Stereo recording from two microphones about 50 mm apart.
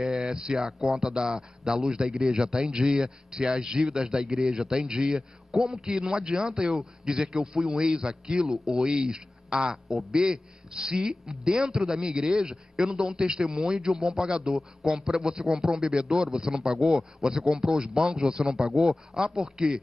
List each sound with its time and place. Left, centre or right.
0.0 s a man's voice: centre
8.5 s a man's voice: centre
8.8 s a man's voice: centre
10.1 s a man's voice: centre